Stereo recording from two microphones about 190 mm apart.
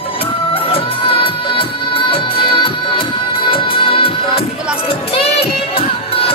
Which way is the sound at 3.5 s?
30° left (ahead or behind).